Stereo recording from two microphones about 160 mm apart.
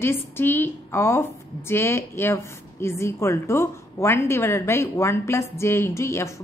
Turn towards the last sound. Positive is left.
turn(degrees=15)  # may be behind; listen again after turning